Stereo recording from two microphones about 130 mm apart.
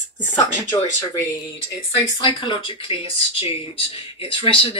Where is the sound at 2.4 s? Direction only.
40° left (ahead or behind).